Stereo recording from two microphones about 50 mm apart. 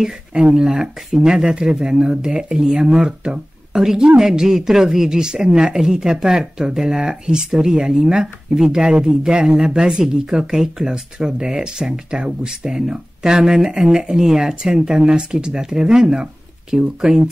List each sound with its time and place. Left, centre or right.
0.3 s speech: centre